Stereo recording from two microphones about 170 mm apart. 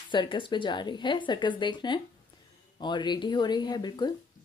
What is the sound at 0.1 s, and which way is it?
Speech, 30° left (ahead or behind).